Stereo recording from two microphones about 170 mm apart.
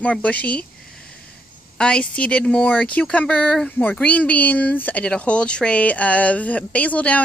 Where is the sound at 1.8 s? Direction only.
5° left (ahead or behind).